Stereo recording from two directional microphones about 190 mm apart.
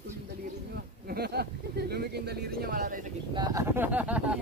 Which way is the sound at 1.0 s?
55° right (ahead or behind).